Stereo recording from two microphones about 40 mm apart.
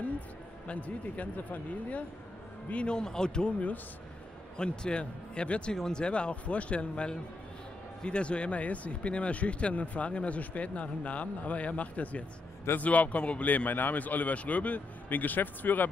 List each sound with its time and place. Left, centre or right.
0.7 s speech: left
2.7 s speech: left
4.6 s speech: left